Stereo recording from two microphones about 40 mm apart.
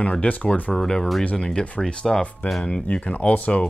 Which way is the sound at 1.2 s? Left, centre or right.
Left.